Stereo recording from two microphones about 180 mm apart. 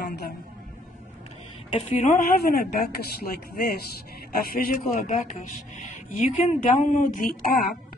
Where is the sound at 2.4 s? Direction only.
60° left (ahead or behind).